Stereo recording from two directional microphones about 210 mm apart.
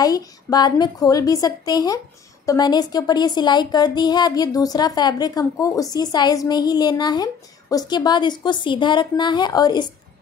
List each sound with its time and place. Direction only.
0.0 s a woman's voice: 20° left (ahead or behind)